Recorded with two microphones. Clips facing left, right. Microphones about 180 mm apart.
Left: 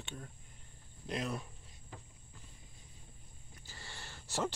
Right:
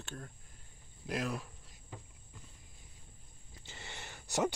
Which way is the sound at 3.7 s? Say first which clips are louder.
Right 3 dB; 20° right (ahead or behind).